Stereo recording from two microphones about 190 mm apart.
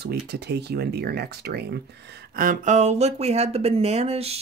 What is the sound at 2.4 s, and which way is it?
Speech, 45° right (ahead or behind).